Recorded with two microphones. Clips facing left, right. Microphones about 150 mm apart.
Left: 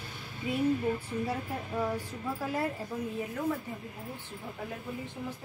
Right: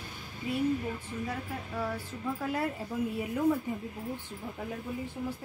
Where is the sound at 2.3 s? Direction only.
Centre (ahead or behind).